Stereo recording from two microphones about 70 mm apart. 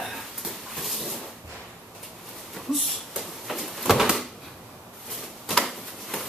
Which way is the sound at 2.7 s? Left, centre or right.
Centre.